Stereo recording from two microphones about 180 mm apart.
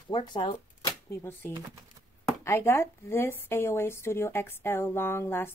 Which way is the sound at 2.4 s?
15° left (ahead or behind).